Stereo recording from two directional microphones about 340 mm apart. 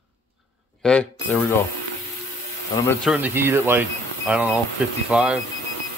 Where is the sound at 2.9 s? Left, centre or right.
Centre.